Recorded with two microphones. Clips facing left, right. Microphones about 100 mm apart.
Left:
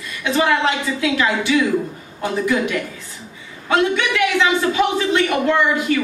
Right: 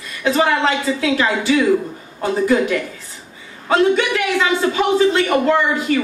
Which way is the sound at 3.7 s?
35° right (ahead or behind).